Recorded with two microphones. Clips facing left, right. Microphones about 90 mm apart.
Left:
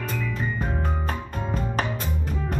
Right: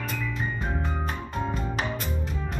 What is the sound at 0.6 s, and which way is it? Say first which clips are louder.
Music: left 2 dB; 45° left (ahead or behind).